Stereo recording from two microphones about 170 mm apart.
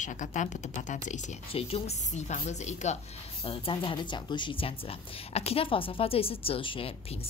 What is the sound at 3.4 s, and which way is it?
Speech, 30° left (ahead or behind).